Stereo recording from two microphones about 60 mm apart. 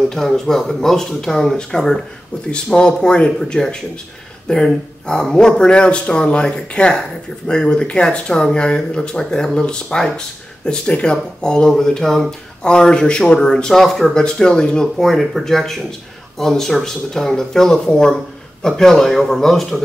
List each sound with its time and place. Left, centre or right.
0.1 s speech: centre
14.2 s speech: centre